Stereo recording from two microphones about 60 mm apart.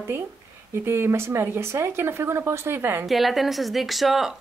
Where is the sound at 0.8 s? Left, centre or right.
Right.